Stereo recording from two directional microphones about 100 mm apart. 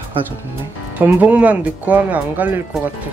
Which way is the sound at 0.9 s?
15° right (ahead or behind).